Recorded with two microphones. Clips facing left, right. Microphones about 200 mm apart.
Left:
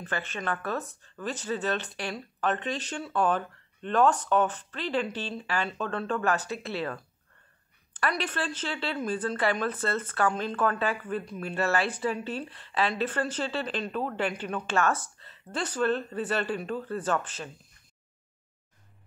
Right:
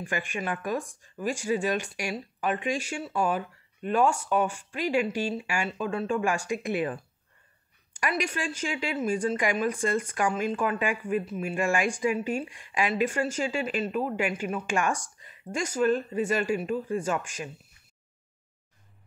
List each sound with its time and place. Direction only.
0.0 s a woman's voice: 10° right (ahead or behind)